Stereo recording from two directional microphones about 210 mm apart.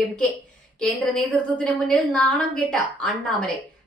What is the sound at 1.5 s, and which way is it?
A woman's voice, 5° left (ahead or behind).